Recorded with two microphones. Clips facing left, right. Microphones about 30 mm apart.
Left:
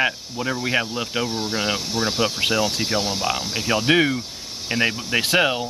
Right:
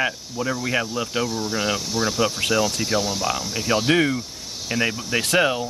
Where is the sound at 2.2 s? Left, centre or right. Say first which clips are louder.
Even; left.